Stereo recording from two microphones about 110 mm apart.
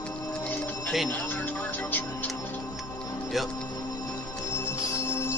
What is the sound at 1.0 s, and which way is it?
Music, 15° left (ahead or behind).